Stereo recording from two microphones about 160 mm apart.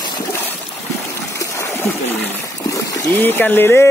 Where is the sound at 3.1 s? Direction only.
10° left (ahead or behind).